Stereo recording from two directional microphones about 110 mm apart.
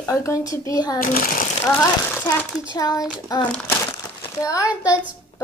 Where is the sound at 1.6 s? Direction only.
20° left (ahead or behind).